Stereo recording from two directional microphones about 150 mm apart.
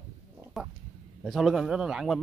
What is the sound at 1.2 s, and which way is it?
Speech, centre (ahead or behind).